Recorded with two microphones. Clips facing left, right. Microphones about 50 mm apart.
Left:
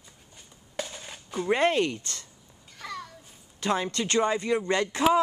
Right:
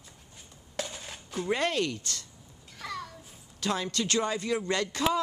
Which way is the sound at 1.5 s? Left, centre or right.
Left.